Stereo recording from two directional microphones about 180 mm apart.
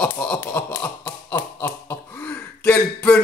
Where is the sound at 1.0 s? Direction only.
15° left (ahead or behind).